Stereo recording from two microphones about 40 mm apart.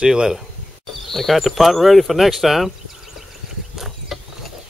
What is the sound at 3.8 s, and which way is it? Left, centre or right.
Mechanisms, centre.